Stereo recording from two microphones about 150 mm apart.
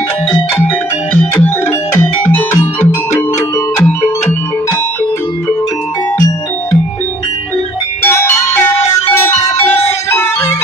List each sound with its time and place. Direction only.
1.1 s music: 10° left (ahead or behind)
6.1 s music: 15° left (ahead or behind)
8.0 s music: 15° left (ahead or behind)